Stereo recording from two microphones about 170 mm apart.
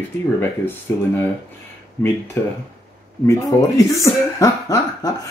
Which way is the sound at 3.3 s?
20° left (ahead or behind).